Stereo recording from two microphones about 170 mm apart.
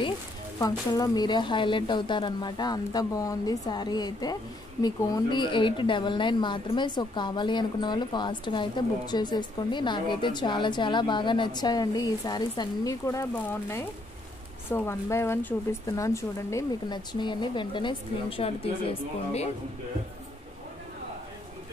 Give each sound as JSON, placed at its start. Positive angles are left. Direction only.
{"t": 0.6, "sound": "a woman's voice", "side_deg": 20}